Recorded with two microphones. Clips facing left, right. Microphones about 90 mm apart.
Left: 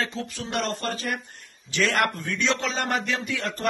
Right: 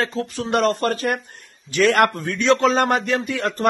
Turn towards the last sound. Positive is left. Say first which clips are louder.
# right 7 dB
turn(degrees=-45)  # may be behind; listen again after turning